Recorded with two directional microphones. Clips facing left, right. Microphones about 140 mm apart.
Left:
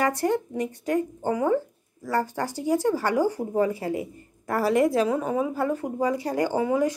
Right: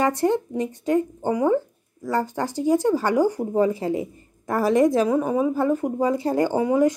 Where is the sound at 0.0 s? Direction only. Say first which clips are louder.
Right 3 dB; 25° right (ahead or behind).